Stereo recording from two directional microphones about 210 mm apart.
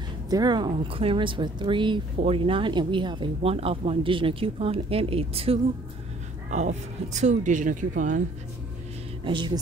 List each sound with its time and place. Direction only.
0.3 s speech: 20° right (ahead or behind); by 8.2 s 40° right (ahead or behind)
9.2 s speech: 20° right (ahead or behind)